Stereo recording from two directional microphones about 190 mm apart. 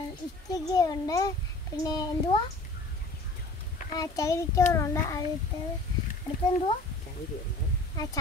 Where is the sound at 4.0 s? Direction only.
15° left (ahead or behind).